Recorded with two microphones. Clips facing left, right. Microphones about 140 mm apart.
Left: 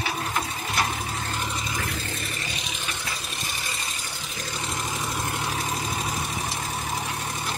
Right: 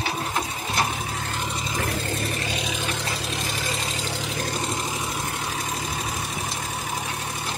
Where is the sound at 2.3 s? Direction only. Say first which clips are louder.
Right 6 dB; 55° right (ahead or behind).